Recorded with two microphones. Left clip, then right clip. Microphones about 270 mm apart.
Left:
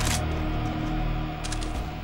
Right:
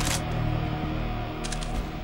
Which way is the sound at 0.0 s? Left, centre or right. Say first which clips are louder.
Even; centre.